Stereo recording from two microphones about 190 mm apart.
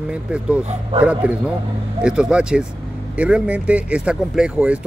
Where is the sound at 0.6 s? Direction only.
35° right (ahead or behind).